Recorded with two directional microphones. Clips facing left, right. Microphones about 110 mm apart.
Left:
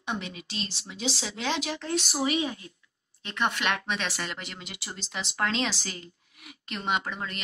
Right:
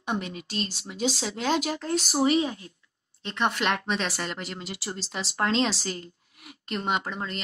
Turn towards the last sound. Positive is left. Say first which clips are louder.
# right 1 dB
turn(degrees=-35)  # may be behind; listen again after turning